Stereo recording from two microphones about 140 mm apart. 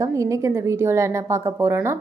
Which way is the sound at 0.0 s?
20° right (ahead or behind).